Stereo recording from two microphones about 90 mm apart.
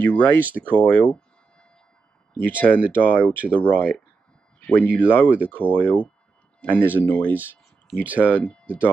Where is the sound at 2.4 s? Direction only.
20° left (ahead or behind).